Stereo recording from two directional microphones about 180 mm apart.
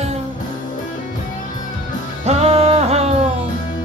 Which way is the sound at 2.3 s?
35° right (ahead or behind).